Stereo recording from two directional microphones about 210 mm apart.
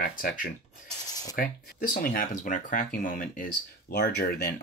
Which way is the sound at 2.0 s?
40° left (ahead or behind).